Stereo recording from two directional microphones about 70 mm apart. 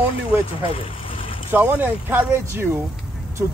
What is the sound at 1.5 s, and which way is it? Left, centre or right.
A man's voice, right.